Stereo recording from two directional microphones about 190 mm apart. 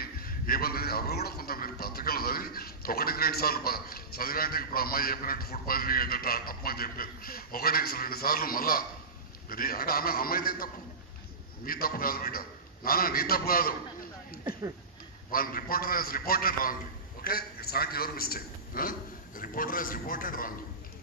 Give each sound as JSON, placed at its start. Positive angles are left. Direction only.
{"t": 0.0, "sound": "a man's voice", "side_deg": 50}
{"t": 15.3, "sound": "a man's voice", "side_deg": 50}